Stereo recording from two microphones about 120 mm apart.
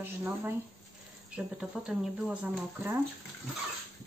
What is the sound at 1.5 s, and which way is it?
A woman's voice, 10° right (ahead or behind).